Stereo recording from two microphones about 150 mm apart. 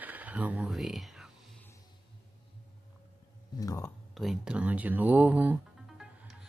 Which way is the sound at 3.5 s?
20° left (ahead or behind).